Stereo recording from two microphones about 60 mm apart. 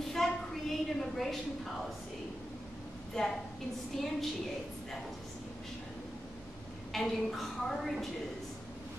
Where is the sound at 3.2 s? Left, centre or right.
Centre.